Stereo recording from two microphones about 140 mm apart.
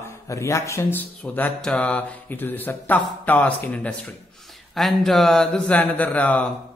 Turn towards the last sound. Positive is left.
turn(degrees=10)  # may be behind; listen again after turning